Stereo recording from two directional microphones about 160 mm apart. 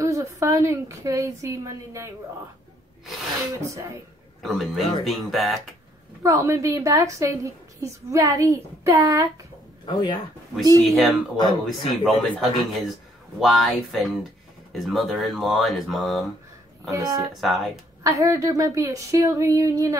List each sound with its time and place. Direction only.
0.0 s a woman's voice: 20° right (ahead or behind)
4.4 s a man's voice: centre (ahead or behind)
6.2 s a woman's voice: 20° right (ahead or behind)
9.8 s speech: 30° left (ahead or behind)
10.8 s speech: centre (ahead or behind)
11.3 s speech: 30° left (ahead or behind)
12.0 s speech: centre (ahead or behind)
16.9 s a woman's voice: 25° right (ahead or behind)
17.3 s speech: centre (ahead or behind)
18.0 s a woman's voice: 20° right (ahead or behind)